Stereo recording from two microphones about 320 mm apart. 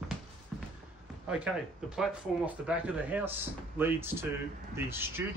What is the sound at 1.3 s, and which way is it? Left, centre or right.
Speech, centre.